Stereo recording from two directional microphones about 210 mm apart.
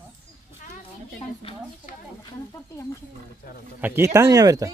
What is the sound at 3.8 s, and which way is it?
Speech, 10° right (ahead or behind).